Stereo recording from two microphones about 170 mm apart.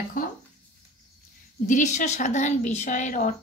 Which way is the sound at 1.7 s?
45° left (ahead or behind).